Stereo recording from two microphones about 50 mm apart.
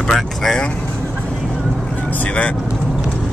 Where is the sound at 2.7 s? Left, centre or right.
Centre.